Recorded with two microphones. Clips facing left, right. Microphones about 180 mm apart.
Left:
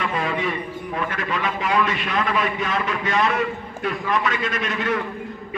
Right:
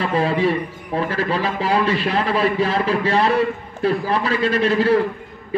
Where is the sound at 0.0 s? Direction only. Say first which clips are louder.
Right 6 dB; 30° right (ahead or behind).